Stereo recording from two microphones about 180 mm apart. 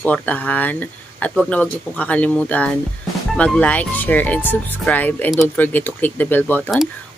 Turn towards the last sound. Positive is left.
turn(degrees=10)  # may be behind; listen again after turning